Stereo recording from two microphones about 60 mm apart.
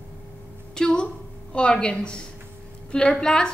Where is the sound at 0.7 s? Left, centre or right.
Centre.